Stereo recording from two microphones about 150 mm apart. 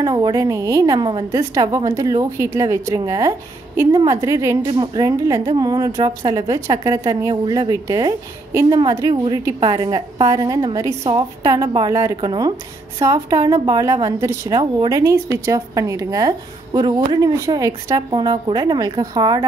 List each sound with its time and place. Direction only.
0.0 s speech: 30° right (ahead or behind)